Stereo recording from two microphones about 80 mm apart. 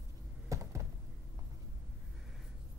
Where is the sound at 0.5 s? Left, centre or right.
Right.